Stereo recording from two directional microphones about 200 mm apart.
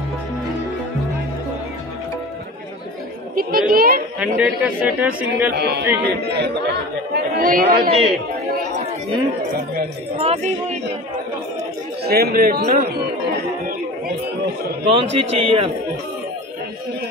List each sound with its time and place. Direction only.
3.3 s a man's voice: 45° right (ahead or behind)
4.2 s speech: 5° right (ahead or behind)
5.5 s speech: 55° right (ahead or behind)
7.2 s a man's voice: 45° right (ahead or behind)
10.1 s speech: 30° right (ahead or behind)
12.0 s a man's voice: 50° right (ahead or behind)
14.9 s a man's voice: 30° right (ahead or behind)